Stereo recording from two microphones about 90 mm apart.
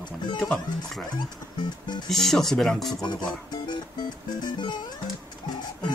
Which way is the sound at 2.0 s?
5° left (ahead or behind).